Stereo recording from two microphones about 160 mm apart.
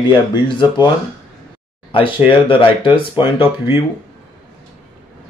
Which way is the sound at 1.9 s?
30° left (ahead or behind).